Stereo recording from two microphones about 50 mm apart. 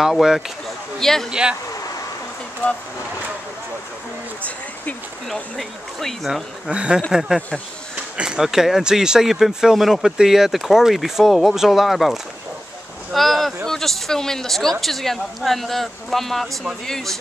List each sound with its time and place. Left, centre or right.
0.0 s speech: centre
0.9 s speech: centre
1.3 s speech: centre
5.3 s a woman's voice: centre
6.7 s speech: right
7.1 s a woman's voice: centre